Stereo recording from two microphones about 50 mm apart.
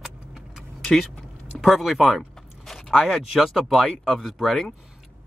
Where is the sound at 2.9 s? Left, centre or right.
Centre.